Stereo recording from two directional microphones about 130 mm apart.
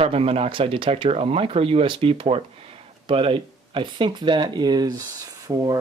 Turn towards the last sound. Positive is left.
turn(degrees=-30)  # may be behind; listen again after turning